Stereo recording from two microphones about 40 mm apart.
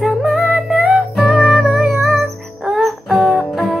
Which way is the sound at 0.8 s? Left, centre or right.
Right.